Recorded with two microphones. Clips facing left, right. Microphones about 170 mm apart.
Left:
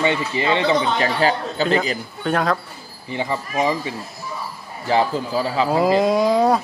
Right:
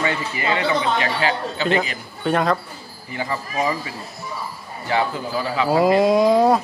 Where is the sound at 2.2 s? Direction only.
Centre (ahead or behind).